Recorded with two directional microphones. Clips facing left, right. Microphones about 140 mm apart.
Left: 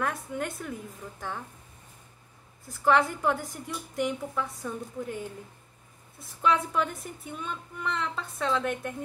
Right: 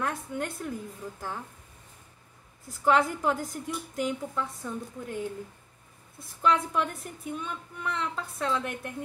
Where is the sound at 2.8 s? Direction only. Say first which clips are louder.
Even; centre (ahead or behind).